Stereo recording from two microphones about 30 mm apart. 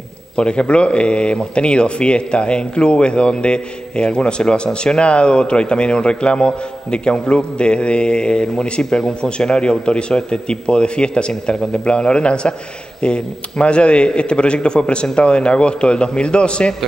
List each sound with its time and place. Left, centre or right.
0.4 s speech: left